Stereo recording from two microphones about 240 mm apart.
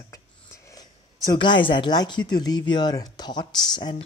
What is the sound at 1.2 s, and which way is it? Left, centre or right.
Speech, centre.